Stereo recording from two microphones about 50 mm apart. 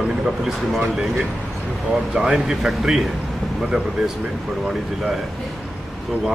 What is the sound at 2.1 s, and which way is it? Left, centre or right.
Speech, centre.